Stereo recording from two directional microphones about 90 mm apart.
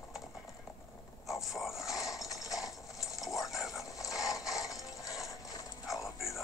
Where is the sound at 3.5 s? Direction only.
Centre (ahead or behind).